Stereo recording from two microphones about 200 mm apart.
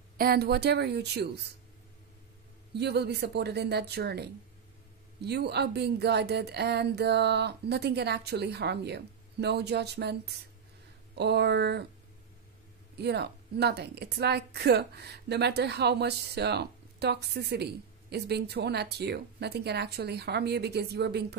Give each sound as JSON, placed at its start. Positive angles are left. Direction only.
{"t": 0.2, "sound": "a woman's voice", "side_deg": -50}
{"t": 2.7, "sound": "a woman's voice", "side_deg": -55}
{"t": 12.9, "sound": "a woman's voice", "side_deg": -55}